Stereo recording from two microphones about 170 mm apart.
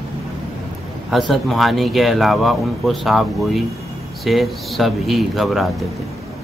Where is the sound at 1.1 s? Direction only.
Centre (ahead or behind).